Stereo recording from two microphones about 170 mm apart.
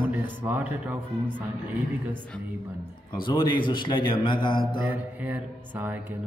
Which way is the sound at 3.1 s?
25° left (ahead or behind).